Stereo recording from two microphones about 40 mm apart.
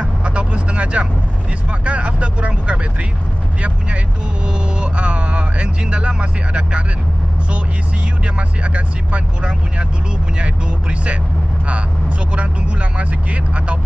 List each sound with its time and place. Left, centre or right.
0.0 s vehicle: right
1.7 s speech: right
4.5 s speech: right
8.4 s speech: right
12.3 s speech: right